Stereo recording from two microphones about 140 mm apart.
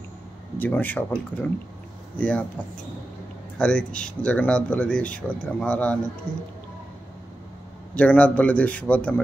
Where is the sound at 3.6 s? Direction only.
5° left (ahead or behind).